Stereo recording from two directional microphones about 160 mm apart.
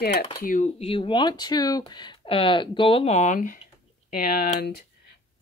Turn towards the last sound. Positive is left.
turn(degrees=70)  # may be behind; listen again after turning